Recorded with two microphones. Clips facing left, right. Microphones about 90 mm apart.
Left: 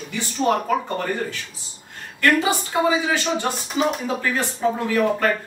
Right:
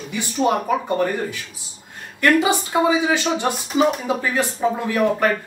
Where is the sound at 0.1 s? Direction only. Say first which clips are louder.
Right 1 dB; 15° right (ahead or behind).